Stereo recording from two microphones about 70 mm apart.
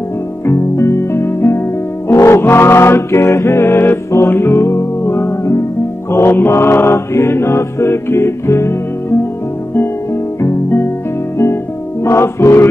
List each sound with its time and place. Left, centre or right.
0.5 s music: left
2.0 s mantra: left
4.3 s music: left
6.1 s mantra: left
10.4 s music: left
12.0 s mantra: left